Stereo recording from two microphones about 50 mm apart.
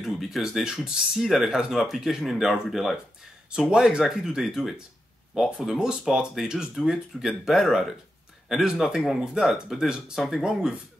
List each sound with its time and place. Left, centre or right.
0.0 s speech: centre
1.7 s speech: centre
6.7 s speech: centre